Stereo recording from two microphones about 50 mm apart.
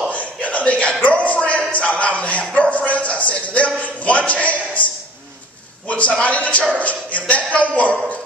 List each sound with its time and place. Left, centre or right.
0.1 s a sound: left
1.7 s a man's voice: left
5.9 s a man's voice: left